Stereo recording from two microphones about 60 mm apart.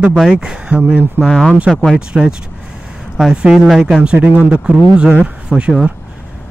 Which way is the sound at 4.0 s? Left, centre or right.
Centre.